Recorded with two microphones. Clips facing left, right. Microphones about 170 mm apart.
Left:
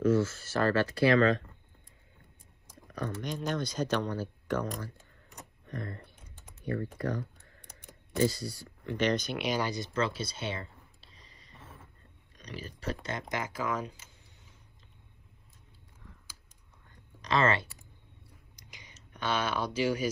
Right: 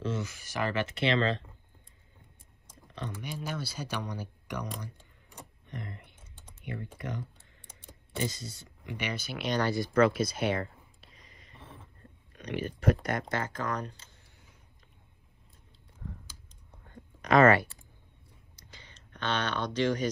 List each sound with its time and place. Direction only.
0.0 s speech: 20° right (ahead or behind)
3.2 s speech: 10° right (ahead or behind)
7.0 s typing: 20° right (ahead or behind)
8.3 s speech: 20° right (ahead or behind); by 9.6 s centre (ahead or behind)
9.6 s speech: 20° left (ahead or behind)
11.0 s a sound: 30° left (ahead or behind)
11.5 s a sound: centre (ahead or behind)
12.4 s speech: 35° left (ahead or behind)
13.3 s speech: 10° left (ahead or behind)
17.2 s speech: 30° left (ahead or behind)
18.6 s a sound: 10° left (ahead or behind)